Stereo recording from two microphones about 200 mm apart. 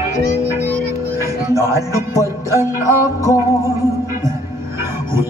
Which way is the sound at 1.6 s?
15° right (ahead or behind).